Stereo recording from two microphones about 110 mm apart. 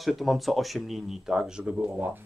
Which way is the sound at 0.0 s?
Centre (ahead or behind).